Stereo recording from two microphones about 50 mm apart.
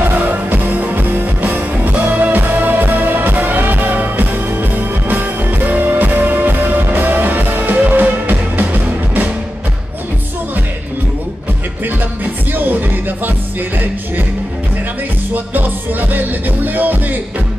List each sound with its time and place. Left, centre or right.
0.1 s music: right
15.3 s music: right